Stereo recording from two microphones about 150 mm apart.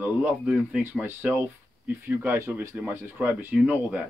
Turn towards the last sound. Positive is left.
turn(degrees=-10)  # may be behind; listen again after turning